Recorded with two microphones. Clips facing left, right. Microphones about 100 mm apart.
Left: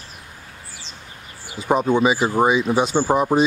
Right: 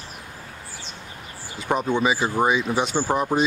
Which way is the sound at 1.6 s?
15° left (ahead or behind).